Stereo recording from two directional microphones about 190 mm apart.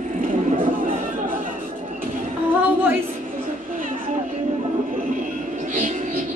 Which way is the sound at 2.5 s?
10° right (ahead or behind).